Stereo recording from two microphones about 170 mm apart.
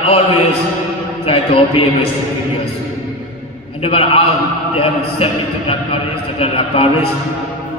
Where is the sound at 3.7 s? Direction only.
35° left (ahead or behind).